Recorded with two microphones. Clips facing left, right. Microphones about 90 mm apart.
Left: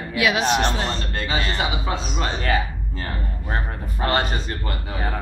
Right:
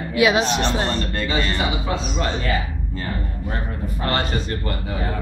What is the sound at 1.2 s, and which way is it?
Speech, 20° left (ahead or behind).